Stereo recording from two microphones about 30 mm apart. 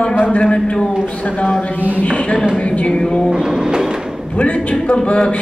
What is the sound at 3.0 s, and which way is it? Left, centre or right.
Speech, left.